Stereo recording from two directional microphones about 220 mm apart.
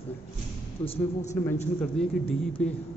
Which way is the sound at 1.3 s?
10° left (ahead or behind).